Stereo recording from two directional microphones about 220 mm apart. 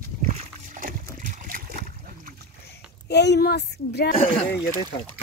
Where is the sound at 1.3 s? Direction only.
40° right (ahead or behind).